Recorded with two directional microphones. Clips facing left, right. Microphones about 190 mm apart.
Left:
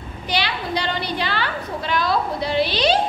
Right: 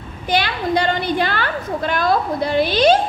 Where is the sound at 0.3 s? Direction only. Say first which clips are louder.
Right 5 dB; 50° right (ahead or behind).